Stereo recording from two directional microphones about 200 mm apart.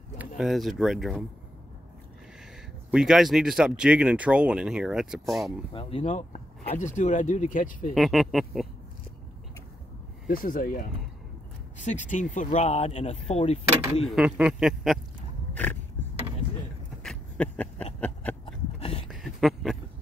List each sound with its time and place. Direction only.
0.4 s speech: centre (ahead or behind)
2.9 s speech: 5° right (ahead or behind)
5.7 s speech: 30° left (ahead or behind)
7.9 s speech: centre (ahead or behind)
10.2 s speech: 45° left (ahead or behind)
14.0 s speech: 5° right (ahead or behind)
15.5 s a sound: 10° left (ahead or behind)
18.4 s a sound: 30° left (ahead or behind)
19.0 s a sound: centre (ahead or behind)